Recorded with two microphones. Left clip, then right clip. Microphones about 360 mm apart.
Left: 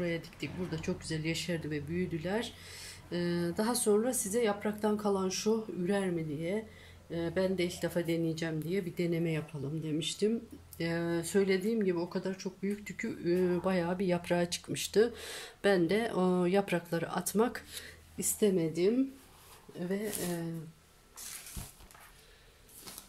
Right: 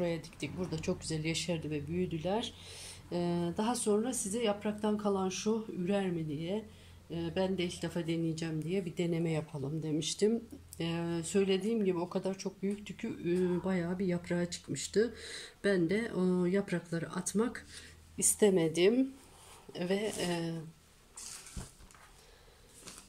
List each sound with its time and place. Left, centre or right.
0.7 s speech: centre
18.1 s a woman's voice: centre
19.9 s a woman's voice: right